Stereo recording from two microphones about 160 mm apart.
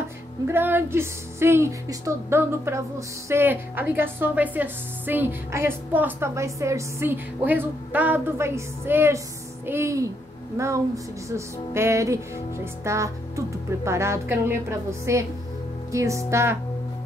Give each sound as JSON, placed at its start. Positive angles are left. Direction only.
{"t": 0.5, "sound": "a woman's voice", "side_deg": -15}